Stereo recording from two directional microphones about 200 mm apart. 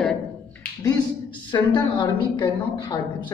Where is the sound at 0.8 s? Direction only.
25° left (ahead or behind).